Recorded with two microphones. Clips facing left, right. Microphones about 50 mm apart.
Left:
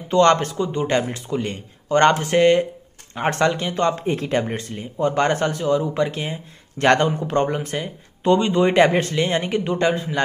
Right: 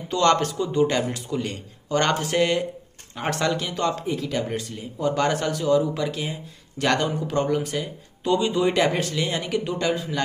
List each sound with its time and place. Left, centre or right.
0.1 s speech: left
4.0 s speech: left
4.5 s speech: left